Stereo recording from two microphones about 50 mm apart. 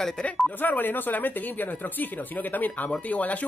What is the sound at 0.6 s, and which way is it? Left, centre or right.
Speech, left.